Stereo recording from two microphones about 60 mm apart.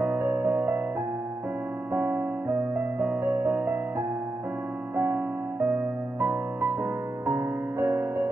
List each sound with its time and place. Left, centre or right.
0.0 s music: right
1.9 s music: right
2.4 s music: right
5.7 s music: right
6.8 s music: right